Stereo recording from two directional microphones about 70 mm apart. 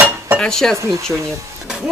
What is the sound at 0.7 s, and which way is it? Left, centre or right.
Speech, right.